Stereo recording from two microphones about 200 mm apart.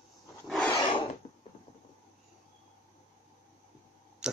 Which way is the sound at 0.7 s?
25° left (ahead or behind).